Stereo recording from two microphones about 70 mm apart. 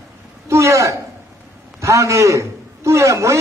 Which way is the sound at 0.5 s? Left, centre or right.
Right.